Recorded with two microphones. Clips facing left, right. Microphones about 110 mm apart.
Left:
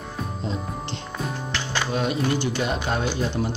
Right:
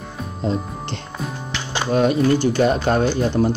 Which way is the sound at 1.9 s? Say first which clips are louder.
Right 9 dB; 45° right (ahead or behind).